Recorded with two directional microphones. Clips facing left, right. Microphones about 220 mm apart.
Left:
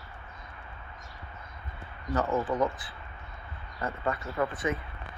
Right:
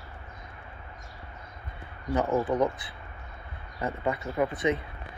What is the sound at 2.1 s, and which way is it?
Speech, 15° right (ahead or behind).